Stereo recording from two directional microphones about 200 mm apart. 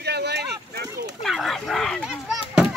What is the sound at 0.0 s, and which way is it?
Boat, 55° right (ahead or behind).